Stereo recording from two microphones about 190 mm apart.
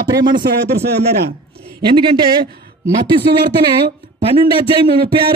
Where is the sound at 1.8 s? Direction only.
25° right (ahead or behind).